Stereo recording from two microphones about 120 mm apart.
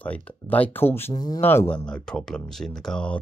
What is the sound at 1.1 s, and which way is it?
Speech, 35° left (ahead or behind).